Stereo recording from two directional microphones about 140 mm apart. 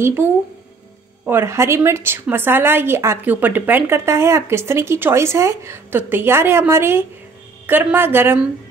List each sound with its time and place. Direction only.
0.0 s a woman's voice: 15° right (ahead or behind)